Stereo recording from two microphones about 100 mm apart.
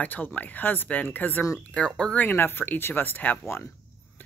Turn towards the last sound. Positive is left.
turn(degrees=25)  # may be behind; listen again after turning